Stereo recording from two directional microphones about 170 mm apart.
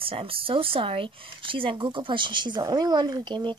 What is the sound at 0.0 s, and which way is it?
Speech, 35° right (ahead or behind).